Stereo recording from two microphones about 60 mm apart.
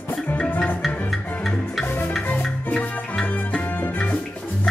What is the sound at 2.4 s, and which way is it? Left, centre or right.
Music, centre.